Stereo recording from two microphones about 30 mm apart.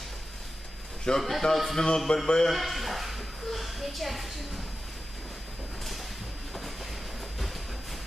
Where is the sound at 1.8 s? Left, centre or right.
Left.